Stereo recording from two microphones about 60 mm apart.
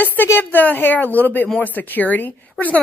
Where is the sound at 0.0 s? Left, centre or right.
Left.